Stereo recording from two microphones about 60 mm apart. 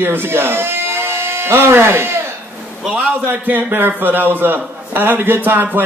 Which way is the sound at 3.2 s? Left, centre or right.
Right.